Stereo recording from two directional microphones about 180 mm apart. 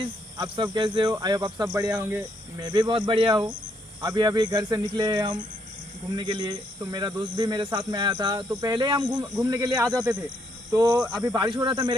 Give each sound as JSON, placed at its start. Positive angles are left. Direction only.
{"t": 0.4, "sound": "speech", "side_deg": -25}
{"t": 2.6, "sound": "speech", "side_deg": -25}
{"t": 11.1, "sound": "speech", "side_deg": -25}